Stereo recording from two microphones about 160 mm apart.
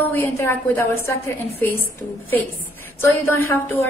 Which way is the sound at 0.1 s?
15° left (ahead or behind).